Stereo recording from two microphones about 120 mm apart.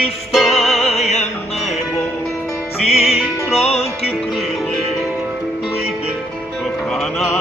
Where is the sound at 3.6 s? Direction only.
60° left (ahead or behind).